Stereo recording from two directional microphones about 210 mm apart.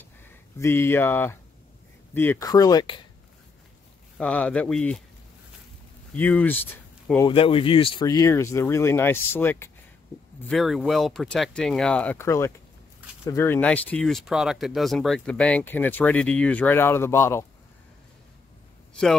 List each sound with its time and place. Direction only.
0.6 s speech: 10° left (ahead or behind)
4.2 s speech: 5° left (ahead or behind)
6.1 s speech: 10° left (ahead or behind)
7.2 s speech: 25° left (ahead or behind); by 9.7 s 10° left (ahead or behind)
10.5 s speech: centre (ahead or behind)